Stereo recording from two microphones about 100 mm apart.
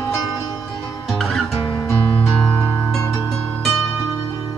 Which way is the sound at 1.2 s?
Centre (ahead or behind).